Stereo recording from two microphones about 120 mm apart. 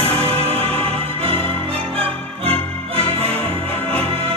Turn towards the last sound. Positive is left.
turn(degrees=-55)  # may be behind; listen again after turning